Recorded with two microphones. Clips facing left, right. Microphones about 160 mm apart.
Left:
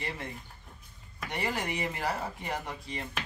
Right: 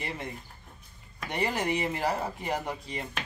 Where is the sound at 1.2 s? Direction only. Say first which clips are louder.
Right 4 dB; 20° right (ahead or behind).